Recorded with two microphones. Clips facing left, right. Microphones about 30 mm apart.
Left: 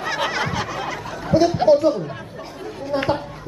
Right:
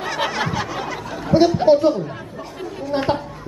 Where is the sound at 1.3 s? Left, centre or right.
Right.